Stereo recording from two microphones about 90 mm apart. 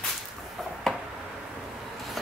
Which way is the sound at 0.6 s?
Centre (ahead or behind).